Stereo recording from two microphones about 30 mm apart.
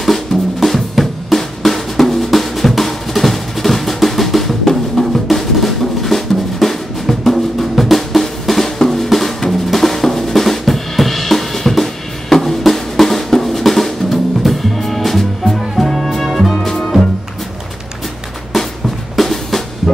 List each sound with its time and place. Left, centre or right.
0.0 s drum: centre
5.0 s drum: left
5.3 s drum: centre
14.4 s music: centre
16.5 s music: left
19.1 s music: centre